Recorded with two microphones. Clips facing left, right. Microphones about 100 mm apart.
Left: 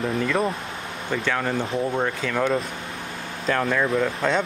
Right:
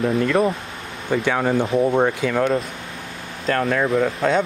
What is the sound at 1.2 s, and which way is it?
Speech, 15° right (ahead or behind).